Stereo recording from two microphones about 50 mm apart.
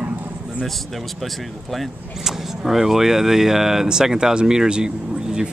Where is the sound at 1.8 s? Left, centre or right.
Centre.